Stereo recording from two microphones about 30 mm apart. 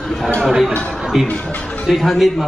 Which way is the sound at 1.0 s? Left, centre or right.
Centre.